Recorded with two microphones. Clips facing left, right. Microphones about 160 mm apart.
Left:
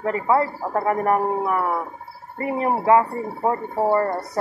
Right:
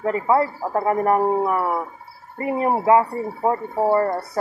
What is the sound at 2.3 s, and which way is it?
Speech, 20° right (ahead or behind).